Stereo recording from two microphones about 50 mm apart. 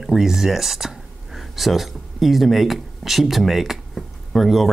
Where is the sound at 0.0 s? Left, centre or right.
Centre.